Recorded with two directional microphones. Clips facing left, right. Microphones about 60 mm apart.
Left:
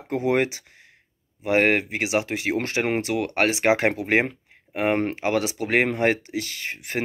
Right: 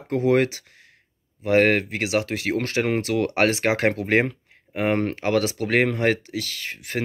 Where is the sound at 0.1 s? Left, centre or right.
Left.